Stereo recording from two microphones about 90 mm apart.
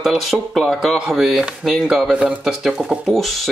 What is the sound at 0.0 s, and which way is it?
Speech, centre (ahead or behind).